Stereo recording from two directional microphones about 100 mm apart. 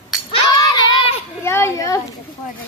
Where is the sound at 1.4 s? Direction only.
25° left (ahead or behind).